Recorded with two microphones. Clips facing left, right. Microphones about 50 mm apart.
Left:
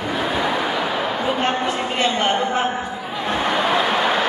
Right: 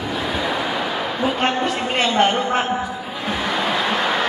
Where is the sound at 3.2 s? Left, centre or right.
Left.